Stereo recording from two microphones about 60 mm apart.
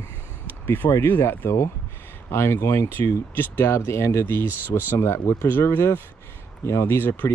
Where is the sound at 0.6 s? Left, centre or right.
Left.